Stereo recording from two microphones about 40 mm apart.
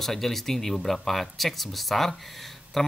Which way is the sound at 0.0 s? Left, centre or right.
Centre.